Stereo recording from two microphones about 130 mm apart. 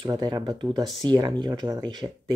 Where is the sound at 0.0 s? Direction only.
30° right (ahead or behind).